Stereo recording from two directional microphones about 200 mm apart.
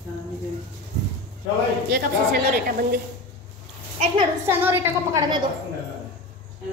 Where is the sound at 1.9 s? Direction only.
50° right (ahead or behind).